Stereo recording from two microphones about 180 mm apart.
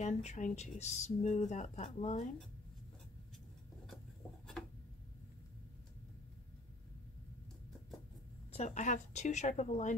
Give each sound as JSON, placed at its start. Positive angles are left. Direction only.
{"t": 0.0, "sound": "speech", "side_deg": 40}
{"t": 8.5, "sound": "speech", "side_deg": 40}